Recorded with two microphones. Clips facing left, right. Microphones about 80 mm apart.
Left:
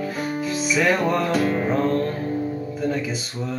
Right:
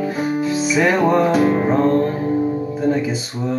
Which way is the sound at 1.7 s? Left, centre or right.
Right.